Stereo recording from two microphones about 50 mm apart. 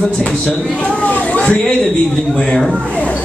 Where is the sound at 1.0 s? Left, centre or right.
Left.